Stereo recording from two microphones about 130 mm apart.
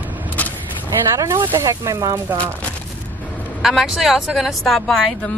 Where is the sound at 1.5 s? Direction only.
25° right (ahead or behind).